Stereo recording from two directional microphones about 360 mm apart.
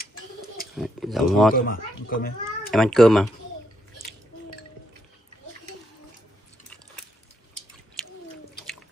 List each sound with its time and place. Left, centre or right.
0.7 s speech: centre
1.5 s a child's voice: left
2.7 s speech: centre